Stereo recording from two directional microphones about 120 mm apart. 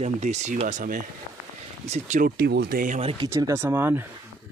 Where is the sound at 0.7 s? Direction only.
90° right.